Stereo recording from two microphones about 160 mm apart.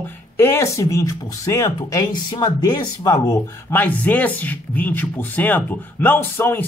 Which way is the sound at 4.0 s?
10° left (ahead or behind).